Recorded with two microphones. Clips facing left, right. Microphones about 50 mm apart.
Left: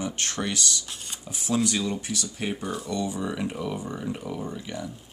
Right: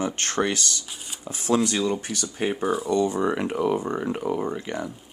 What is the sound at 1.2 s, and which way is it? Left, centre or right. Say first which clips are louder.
Speech: right 4 dB; right.